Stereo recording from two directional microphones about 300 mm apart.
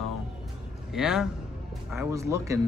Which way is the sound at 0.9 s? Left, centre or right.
Centre.